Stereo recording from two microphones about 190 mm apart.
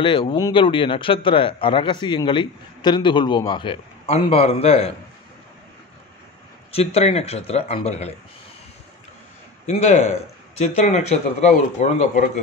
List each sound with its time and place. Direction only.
0.0 s a man's voice: 25° left (ahead or behind)
6.7 s a man's voice: 35° left (ahead or behind)
9.7 s a man's voice: 35° left (ahead or behind)